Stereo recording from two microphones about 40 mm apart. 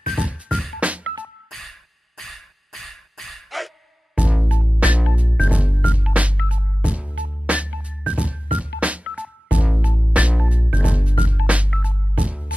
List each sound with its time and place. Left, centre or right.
0.2 s music: right
1.5 s beatboxing: centre
4.1 s music: right